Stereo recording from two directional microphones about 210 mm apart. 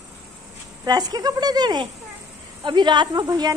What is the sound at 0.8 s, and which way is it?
Speech, 20° right (ahead or behind).